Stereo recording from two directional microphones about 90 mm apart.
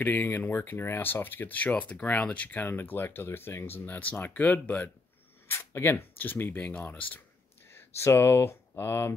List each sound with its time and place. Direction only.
0.0 s speech: 20° left (ahead or behind)
7.7 s speech: 30° left (ahead or behind)